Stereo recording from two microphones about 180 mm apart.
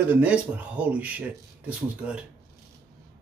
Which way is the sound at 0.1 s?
5° right (ahead or behind).